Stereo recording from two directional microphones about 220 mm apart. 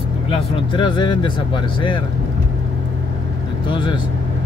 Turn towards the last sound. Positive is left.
turn(degrees=20)  # may be behind; listen again after turning